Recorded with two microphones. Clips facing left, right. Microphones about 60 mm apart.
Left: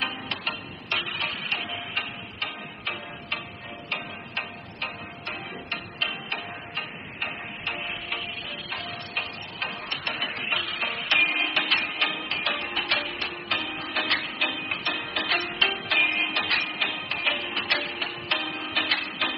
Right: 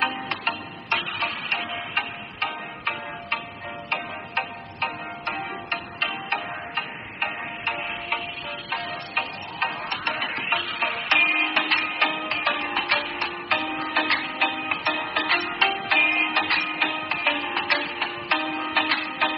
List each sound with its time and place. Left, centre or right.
0.0 s music: right